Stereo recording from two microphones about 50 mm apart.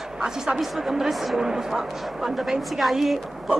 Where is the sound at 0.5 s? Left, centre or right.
Centre.